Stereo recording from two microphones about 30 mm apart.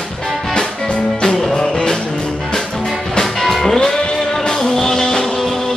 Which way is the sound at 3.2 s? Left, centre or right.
Centre.